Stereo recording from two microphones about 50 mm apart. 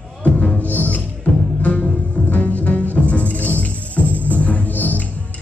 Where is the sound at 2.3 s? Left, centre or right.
Left.